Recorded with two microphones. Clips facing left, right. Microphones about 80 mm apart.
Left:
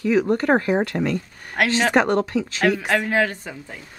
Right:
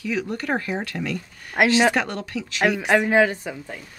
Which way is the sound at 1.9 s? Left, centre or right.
Left.